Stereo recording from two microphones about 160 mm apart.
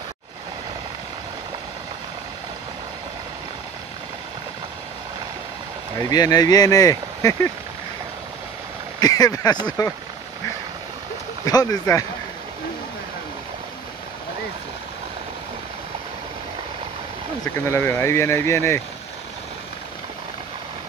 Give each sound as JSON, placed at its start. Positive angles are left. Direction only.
{"t": 6.0, "sound": "speech", "side_deg": 25}
{"t": 9.0, "sound": "speech", "side_deg": 25}
{"t": 11.4, "sound": "speech", "side_deg": 25}
{"t": 17.6, "sound": "speech", "side_deg": 15}